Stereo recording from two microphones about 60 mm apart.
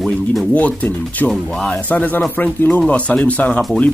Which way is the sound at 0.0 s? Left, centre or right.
Centre.